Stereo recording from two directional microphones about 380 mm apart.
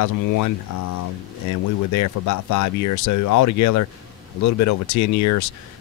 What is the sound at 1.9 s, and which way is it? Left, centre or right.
Speech, left.